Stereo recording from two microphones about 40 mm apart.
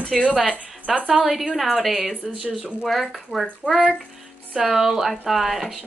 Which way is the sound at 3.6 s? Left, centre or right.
Left.